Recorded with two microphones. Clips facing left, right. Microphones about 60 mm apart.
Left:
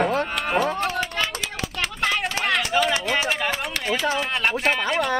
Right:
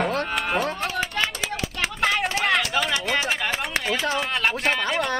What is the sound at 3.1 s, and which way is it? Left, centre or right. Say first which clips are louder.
Speech: left 1 dB; centre.